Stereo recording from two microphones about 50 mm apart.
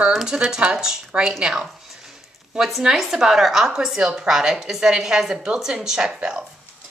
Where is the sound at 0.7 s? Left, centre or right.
Centre.